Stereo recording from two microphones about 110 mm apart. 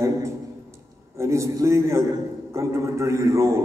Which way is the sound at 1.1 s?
30° right (ahead or behind).